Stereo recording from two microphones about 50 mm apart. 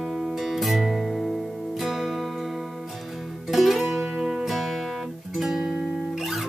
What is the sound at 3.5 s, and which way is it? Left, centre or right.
Music, centre.